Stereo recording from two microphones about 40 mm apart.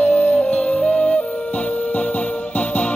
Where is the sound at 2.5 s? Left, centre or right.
Left.